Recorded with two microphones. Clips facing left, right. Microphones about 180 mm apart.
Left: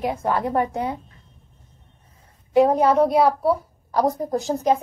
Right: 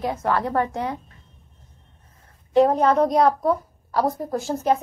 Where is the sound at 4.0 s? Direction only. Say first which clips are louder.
Left 2 dB; 20° left (ahead or behind).